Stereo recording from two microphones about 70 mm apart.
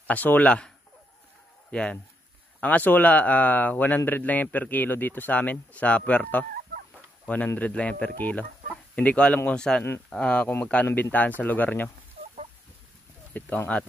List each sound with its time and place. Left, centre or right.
0.0 s speech: left
13.3 s speech: left